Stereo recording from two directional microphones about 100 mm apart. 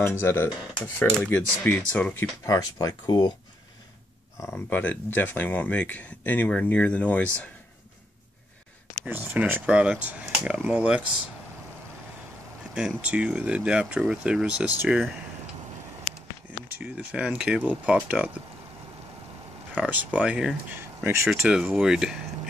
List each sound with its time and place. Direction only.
0.0 s speech: 25° left (ahead or behind)
1.2 s speech: 15° left (ahead or behind)
2.4 s speech: 40° left (ahead or behind)
4.6 s speech: 20° left (ahead or behind)
9.0 s speech: 20° right (ahead or behind)
12.7 s speech: 10° right (ahead or behind)
16.7 s speech: 15° right (ahead or behind)
19.7 s speech: 15° right (ahead or behind)
20.7 s speech: 25° right (ahead or behind)
21.3 s speech: 5° right (ahead or behind)